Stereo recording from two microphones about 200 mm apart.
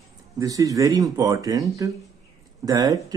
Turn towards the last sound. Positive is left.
turn(degrees=-20)  # may be behind; listen again after turning